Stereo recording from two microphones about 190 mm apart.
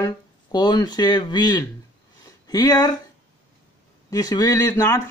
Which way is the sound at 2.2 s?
20° left (ahead or behind).